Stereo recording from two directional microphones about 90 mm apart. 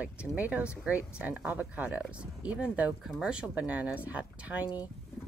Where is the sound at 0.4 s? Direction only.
15° right (ahead or behind).